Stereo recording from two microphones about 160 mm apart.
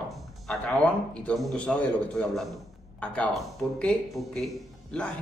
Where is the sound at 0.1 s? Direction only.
Centre (ahead or behind).